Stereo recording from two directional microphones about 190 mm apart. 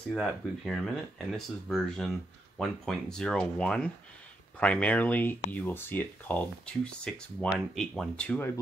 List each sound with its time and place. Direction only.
0.1 s speech: centre (ahead or behind)